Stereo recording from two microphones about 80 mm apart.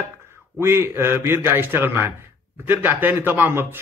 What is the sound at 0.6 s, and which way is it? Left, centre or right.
Speech, right.